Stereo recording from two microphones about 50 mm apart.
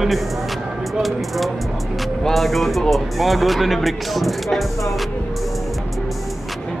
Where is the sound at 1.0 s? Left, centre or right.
Centre.